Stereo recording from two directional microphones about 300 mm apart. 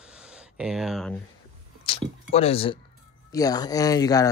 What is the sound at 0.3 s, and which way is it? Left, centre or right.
Speech, centre.